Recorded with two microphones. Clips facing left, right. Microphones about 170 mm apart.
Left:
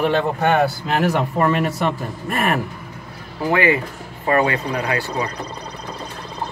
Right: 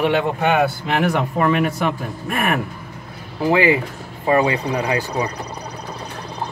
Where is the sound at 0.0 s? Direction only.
10° right (ahead or behind).